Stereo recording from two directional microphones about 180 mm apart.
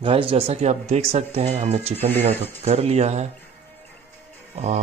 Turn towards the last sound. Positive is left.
turn(degrees=-40)  # may be behind; listen again after turning